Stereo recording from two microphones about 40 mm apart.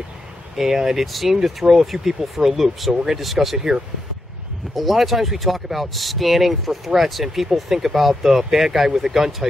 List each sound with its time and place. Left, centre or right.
0.6 s speech: centre
2.9 s speech: centre
3.2 s speech: centre
3.5 s speech: centre
4.7 s speech: centre